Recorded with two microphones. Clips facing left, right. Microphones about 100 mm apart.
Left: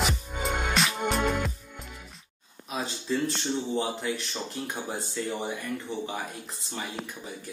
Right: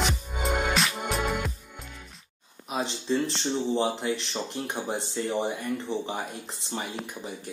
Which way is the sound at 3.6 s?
30° right (ahead or behind).